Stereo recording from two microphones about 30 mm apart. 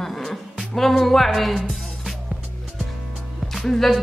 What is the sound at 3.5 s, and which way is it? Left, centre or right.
Speech, centre.